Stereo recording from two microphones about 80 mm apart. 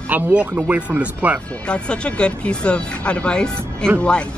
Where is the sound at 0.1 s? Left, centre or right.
Centre.